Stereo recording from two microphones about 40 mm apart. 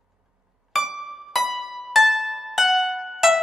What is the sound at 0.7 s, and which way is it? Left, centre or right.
Music, centre.